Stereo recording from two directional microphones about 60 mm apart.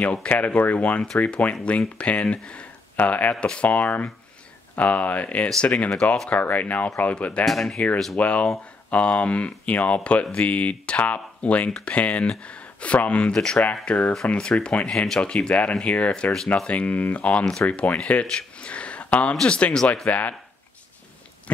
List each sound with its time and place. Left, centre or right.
0.0 s speech: left
7.4 s speech: centre
8.2 s speech: left
13.8 s speech: left
14.9 s speech: centre
18.6 s a sound: centre
19.0 s speech: left
20.1 s speech: left